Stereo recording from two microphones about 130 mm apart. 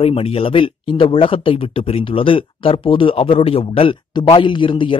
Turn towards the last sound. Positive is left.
turn(degrees=40)  # may be behind; listen again after turning